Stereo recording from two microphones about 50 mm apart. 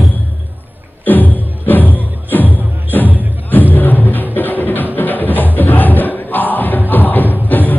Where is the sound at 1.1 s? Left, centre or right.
Left.